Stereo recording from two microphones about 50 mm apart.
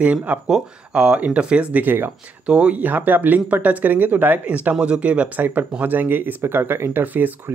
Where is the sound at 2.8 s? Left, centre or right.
Right.